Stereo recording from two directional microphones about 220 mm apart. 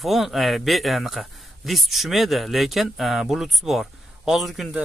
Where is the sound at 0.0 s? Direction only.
Centre (ahead or behind).